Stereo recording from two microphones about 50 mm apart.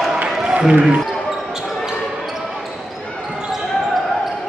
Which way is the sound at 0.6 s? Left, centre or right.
Right.